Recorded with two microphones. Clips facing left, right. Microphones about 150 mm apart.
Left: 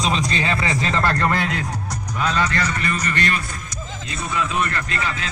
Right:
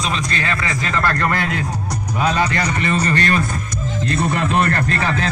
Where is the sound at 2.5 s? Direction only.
20° right (ahead or behind); by 3.4 s 40° right (ahead or behind).